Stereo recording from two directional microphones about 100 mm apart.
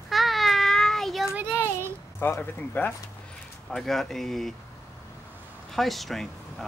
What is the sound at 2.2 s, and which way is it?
Speech, 20° left (ahead or behind).